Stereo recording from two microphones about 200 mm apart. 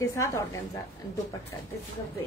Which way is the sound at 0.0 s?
15° left (ahead or behind).